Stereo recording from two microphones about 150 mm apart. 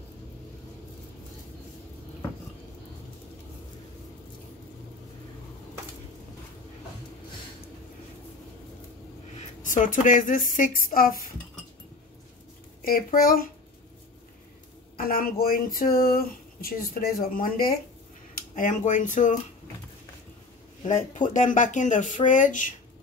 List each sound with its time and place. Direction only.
9.6 s speech: 60° left (ahead or behind)
12.8 s a child's voice: 80° left
15.0 s speech: 75° left (ahead or behind)
18.5 s speech: 55° left (ahead or behind)
20.8 s speech: 55° left (ahead or behind)